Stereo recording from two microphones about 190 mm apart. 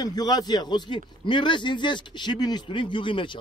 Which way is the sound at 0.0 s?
20° left (ahead or behind).